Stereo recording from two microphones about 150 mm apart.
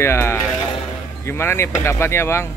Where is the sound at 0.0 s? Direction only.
15° left (ahead or behind).